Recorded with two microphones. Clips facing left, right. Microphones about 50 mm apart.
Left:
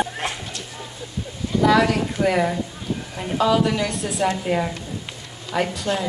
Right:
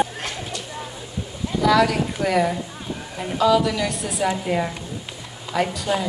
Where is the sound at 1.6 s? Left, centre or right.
Left.